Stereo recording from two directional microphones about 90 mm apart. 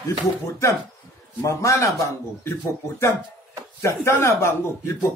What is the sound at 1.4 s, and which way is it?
Speech, 35° left (ahead or behind).